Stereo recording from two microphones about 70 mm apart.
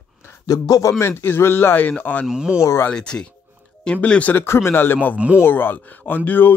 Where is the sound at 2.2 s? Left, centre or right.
Centre.